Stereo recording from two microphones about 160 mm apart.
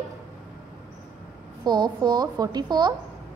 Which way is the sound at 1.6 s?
25° right (ahead or behind).